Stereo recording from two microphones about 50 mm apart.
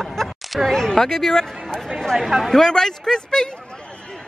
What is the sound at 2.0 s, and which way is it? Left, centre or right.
Speech, centre.